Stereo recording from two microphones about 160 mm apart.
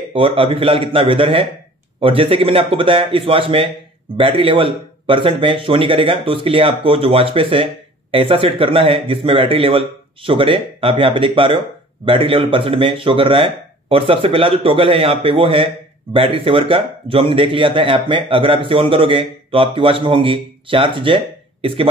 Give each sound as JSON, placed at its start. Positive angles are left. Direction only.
{"t": 0.1, "sound": "a man's voice", "side_deg": -35}